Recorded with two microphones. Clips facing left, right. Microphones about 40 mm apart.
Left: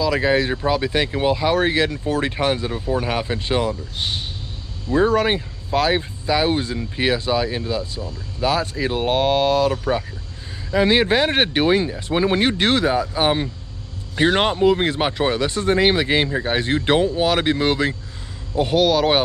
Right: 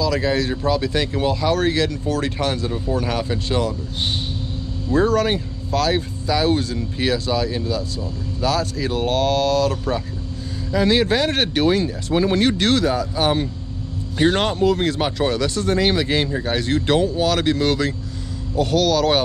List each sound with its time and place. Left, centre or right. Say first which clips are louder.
0.0 s speech: left 2 dB; left
4.8 s speech: left 1 dB; centre